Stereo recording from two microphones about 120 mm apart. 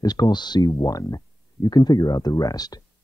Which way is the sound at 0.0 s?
35° left (ahead or behind).